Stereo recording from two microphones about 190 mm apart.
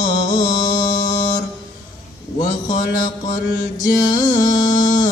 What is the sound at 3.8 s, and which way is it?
Music, 20° left (ahead or behind).